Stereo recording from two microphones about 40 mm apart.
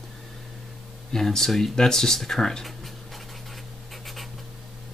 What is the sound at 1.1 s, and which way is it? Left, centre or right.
Speech, centre.